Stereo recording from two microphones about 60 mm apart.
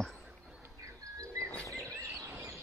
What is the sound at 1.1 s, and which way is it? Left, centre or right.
Bird, right.